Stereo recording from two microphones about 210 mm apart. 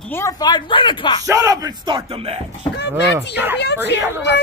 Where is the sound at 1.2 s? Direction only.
15° right (ahead or behind).